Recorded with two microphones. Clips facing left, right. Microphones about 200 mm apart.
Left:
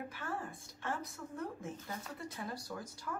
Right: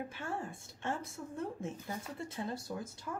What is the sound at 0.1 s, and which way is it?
A woman's voice, 25° right (ahead or behind).